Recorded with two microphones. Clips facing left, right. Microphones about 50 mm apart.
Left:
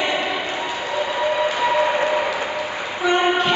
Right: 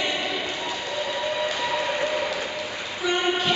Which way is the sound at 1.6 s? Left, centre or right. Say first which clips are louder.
Left 7 dB; left.